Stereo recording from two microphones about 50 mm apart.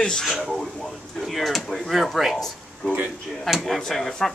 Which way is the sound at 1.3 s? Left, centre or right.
Centre.